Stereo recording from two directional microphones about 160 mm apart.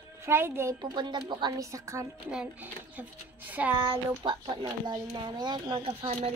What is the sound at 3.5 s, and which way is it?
Speech, 10° right (ahead or behind).